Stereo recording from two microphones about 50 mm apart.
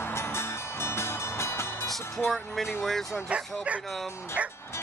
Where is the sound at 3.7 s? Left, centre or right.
Right.